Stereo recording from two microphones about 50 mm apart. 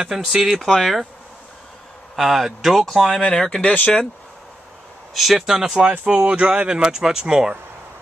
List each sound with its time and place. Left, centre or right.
0.2 s speech: centre
0.6 s speech: centre
2.1 s speech: centre
3.2 s speech: centre
5.1 s speech: centre
5.5 s speech: centre